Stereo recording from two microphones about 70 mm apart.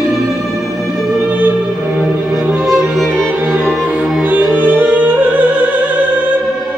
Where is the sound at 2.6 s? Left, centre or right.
Centre.